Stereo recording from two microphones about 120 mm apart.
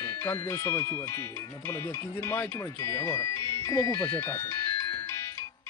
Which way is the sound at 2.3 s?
25° left (ahead or behind).